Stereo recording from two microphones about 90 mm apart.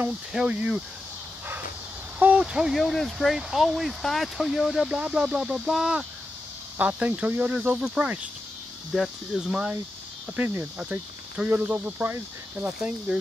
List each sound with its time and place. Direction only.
0.3 s speech: 10° right (ahead or behind)
2.1 s speech: 15° right (ahead or behind)
7.8 s speech: 5° right (ahead or behind)